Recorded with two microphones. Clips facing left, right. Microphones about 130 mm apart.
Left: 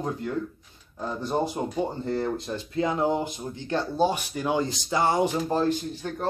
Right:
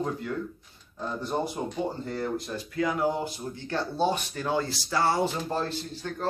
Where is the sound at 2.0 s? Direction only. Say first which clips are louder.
Left 3 dB; 25° left (ahead or behind).